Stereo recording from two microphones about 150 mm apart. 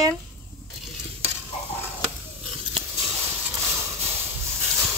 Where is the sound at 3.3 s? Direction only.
15° right (ahead or behind).